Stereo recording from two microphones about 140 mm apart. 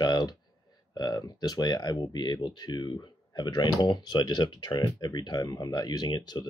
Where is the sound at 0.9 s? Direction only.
30° left (ahead or behind).